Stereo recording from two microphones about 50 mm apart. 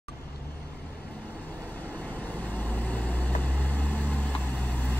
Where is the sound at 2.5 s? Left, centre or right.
Left.